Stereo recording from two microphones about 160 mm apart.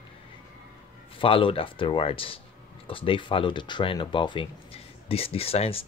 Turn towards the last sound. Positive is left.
turn(degrees=40)  # may be behind; listen again after turning